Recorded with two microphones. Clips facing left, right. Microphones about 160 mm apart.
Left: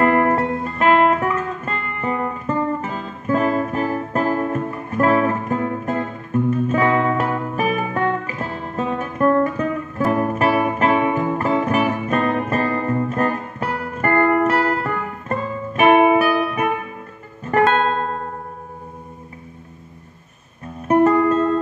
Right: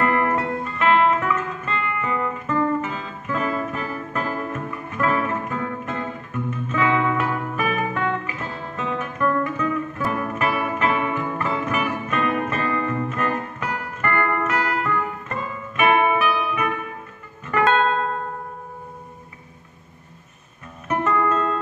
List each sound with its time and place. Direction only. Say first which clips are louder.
0.0 s music: left 5 dB; 40° left (ahead or behind)
16.3 s music: left 4 dB; 45° left (ahead or behind)
20.9 s music: left 7 dB; 35° left (ahead or behind)